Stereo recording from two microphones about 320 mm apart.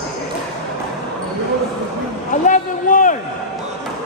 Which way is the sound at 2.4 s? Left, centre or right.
Left.